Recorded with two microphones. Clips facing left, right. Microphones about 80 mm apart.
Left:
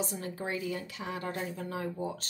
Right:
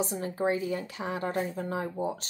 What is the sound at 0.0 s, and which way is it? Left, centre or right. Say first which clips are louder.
Speech: right 7 dB; right.